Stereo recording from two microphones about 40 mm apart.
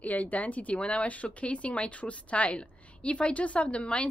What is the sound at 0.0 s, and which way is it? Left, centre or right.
Speech, left.